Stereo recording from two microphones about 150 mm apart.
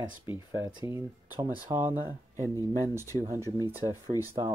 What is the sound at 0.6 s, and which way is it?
Speech, 25° right (ahead or behind).